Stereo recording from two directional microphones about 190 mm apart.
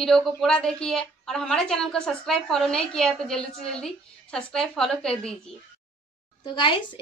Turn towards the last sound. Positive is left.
turn(degrees=25)  # may be behind; listen again after turning